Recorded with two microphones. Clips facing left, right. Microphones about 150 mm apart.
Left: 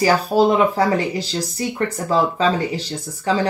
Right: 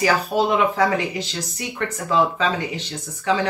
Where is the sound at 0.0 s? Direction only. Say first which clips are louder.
Left 4 dB; 35° left (ahead or behind).